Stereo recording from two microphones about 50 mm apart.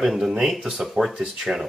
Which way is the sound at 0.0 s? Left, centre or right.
Centre.